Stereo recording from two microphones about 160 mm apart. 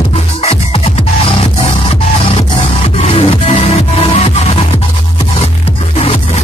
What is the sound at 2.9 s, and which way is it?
Music, 40° left (ahead or behind).